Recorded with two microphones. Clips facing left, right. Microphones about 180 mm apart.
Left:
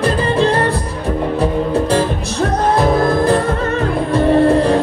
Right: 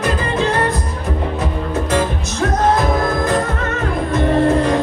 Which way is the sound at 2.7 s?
30° left (ahead or behind).